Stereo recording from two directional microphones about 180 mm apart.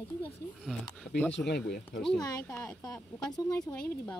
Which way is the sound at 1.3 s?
70° left (ahead or behind).